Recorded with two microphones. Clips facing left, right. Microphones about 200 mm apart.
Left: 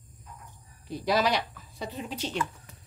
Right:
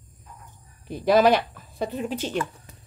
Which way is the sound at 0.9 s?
55° right (ahead or behind).